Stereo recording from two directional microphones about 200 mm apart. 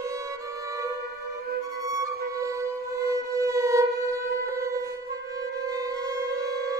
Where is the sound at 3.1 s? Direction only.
15° right (ahead or behind).